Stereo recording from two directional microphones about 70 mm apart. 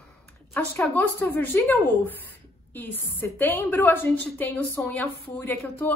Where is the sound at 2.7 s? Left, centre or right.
Left.